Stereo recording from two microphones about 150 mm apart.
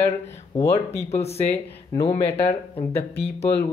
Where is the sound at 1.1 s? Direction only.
45° left (ahead or behind).